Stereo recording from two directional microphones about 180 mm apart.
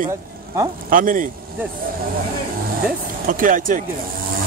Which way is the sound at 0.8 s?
50° right (ahead or behind).